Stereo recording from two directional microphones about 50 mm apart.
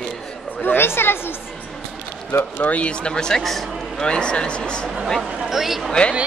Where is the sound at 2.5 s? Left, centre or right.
Left.